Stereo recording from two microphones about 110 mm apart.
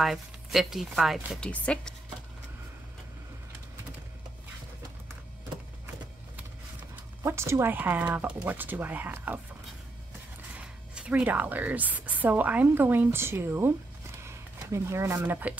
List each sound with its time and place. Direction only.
0.0 s speech: centre (ahead or behind)
7.2 s speech: 25° right (ahead or behind)
10.5 s speech: 10° right (ahead or behind)
14.2 s a sound: 25° right (ahead or behind)
15.1 s speech: 15° right (ahead or behind)